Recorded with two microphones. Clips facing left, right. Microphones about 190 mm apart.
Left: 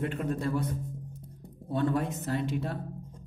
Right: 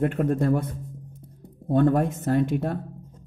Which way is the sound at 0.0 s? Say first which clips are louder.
Right 8 dB; 55° right (ahead or behind).